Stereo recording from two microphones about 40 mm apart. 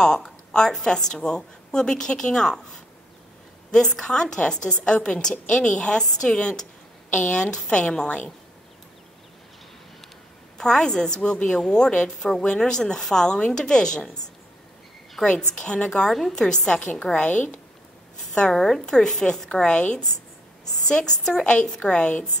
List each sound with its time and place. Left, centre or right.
0.5 s a woman's voice: centre
3.7 s a woman's voice: centre
7.2 s a woman's voice: left
7.5 s a woman's voice: left
10.6 s a woman's voice: centre
15.2 s a woman's voice: centre
15.6 s a woman's voice: left
16.1 s a woman's voice: centre
16.3 s a woman's voice: centre
17.0 s a woman's voice: left
18.3 s a woman's voice: centre
20.9 s a woman's voice: centre